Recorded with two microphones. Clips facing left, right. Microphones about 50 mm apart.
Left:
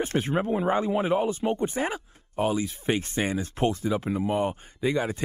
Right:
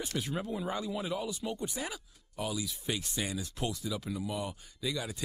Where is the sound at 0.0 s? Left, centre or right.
Left.